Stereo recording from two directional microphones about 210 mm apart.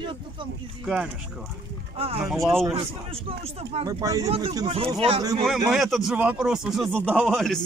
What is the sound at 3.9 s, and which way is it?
Speech, 15° right (ahead or behind).